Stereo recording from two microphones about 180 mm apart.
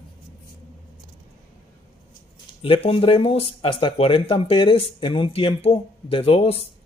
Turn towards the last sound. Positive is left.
turn(degrees=35)  # may be behind; listen again after turning